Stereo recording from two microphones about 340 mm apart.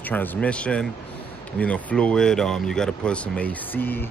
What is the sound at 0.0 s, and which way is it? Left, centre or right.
Speech, centre.